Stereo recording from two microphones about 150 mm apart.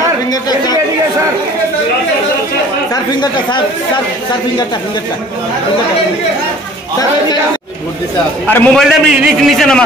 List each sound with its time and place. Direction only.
0.3 s chatter: 25° left (ahead or behind)
2.9 s speech: 30° left (ahead or behind)
8.7 s a man's voice: centre (ahead or behind)